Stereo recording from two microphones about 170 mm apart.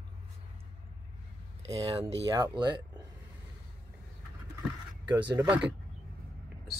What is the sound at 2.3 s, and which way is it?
Speech, 25° right (ahead or behind).